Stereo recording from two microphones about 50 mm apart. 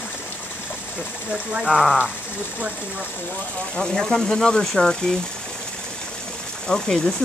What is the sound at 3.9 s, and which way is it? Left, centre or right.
Speech, centre.